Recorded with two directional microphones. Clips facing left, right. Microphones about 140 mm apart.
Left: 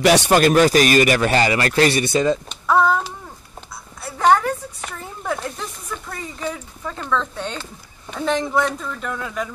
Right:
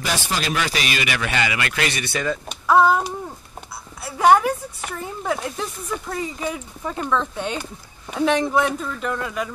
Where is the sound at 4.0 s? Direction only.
10° right (ahead or behind).